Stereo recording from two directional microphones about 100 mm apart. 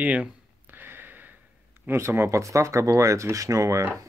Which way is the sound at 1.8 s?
25° right (ahead or behind).